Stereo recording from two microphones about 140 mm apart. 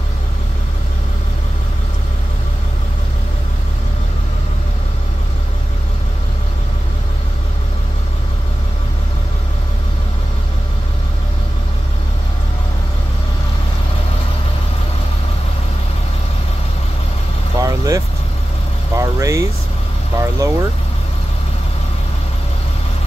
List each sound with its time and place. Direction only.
17.6 s vehicle: 25° right (ahead or behind)